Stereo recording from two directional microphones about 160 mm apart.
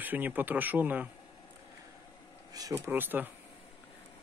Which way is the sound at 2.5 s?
25° right (ahead or behind).